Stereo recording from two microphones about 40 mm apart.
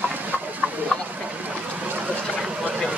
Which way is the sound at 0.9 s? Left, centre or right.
Centre.